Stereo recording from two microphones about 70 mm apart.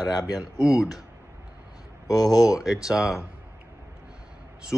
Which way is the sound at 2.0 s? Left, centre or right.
Left.